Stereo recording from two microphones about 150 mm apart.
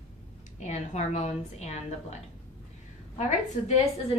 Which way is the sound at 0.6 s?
50° left (ahead or behind).